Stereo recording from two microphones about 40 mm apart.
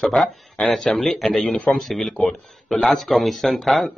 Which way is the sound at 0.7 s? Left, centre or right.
Centre.